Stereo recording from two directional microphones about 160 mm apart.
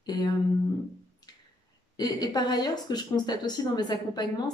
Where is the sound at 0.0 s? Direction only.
25° left (ahead or behind).